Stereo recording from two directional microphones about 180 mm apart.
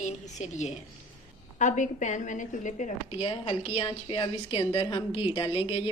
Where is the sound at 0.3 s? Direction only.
40° left (ahead or behind).